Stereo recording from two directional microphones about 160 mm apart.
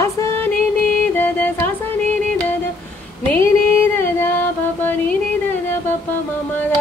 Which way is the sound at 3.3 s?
15° left (ahead or behind).